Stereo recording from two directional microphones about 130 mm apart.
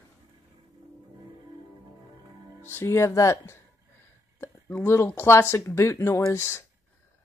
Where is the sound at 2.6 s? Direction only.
20° left (ahead or behind).